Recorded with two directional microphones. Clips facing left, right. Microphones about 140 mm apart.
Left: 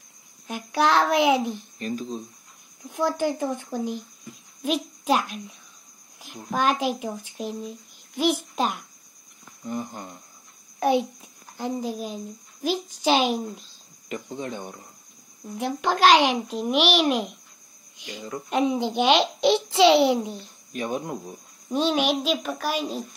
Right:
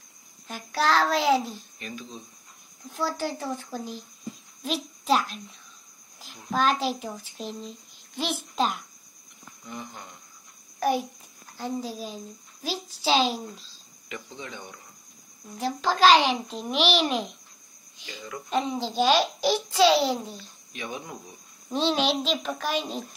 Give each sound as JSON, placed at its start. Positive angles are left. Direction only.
{"t": 0.5, "sound": "a child's voice", "side_deg": 15}
{"t": 1.8, "sound": "speech", "side_deg": 40}
{"t": 2.9, "sound": "a child's voice", "side_deg": 15}
{"t": 9.7, "sound": "speech", "side_deg": 45}
{"t": 10.8, "sound": "a child's voice", "side_deg": 25}
{"t": 13.6, "sound": "speech", "side_deg": 45}
{"t": 15.5, "sound": "a child's voice", "side_deg": 15}
{"t": 18.5, "sound": "a child's voice", "side_deg": 15}
{"t": 20.7, "sound": "speech", "side_deg": 45}
{"t": 21.6, "sound": "a child's voice", "side_deg": 10}